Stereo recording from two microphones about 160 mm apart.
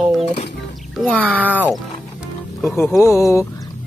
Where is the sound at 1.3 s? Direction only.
10° right (ahead or behind).